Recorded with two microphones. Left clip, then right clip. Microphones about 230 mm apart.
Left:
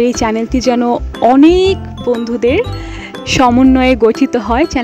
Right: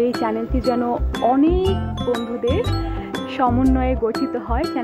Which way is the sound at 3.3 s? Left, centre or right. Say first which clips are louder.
Left 10 dB; left.